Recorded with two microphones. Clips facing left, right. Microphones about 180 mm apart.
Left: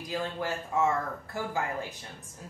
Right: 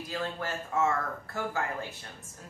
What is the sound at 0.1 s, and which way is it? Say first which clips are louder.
Speech: left 1 dB; 15° left (ahead or behind).